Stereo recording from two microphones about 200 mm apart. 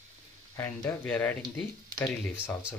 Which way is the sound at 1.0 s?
5° left (ahead or behind).